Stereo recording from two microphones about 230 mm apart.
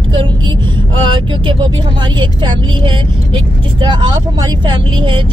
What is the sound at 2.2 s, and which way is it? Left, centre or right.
Speech, right.